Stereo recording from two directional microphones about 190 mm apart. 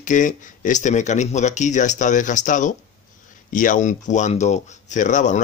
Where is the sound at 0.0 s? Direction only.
40° left (ahead or behind).